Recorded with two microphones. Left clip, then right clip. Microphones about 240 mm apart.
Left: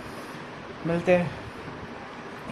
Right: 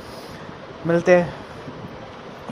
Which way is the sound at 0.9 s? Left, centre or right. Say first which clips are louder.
Right 7 dB; centre.